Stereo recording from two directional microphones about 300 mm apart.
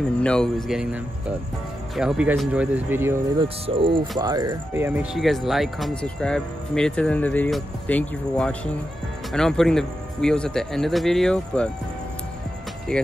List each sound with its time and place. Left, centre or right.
0.2 s speech: centre
2.0 s speech: centre
3.4 s speech: centre
12.9 s speech: centre